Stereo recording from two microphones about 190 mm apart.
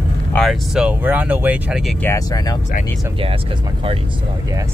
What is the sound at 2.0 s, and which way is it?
Speech, 15° left (ahead or behind).